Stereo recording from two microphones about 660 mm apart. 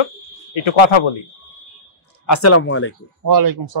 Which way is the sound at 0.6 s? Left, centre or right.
Left.